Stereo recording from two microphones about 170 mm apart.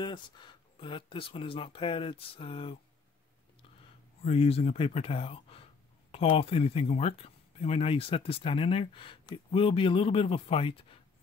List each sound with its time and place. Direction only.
0.0 s speech: 25° left (ahead or behind)
4.2 s speech: 35° left (ahead or behind)